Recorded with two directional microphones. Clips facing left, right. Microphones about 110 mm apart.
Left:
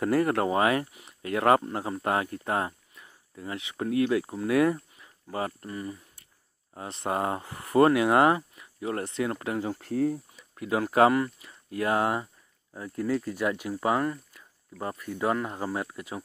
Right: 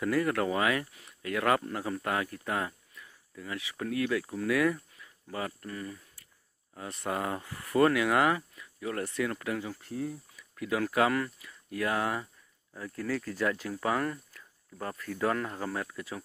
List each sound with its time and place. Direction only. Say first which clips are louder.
0.0 s speech: left 4 dB; 40° left (ahead or behind)
9.8 s speech: left 9 dB; 55° left (ahead or behind)
10.1 s speech: left 7 dB; 30° left (ahead or behind)